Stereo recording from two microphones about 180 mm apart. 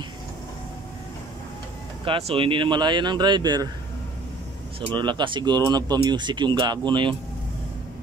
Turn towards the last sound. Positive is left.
turn(degrees=-25)  # may be behind; listen again after turning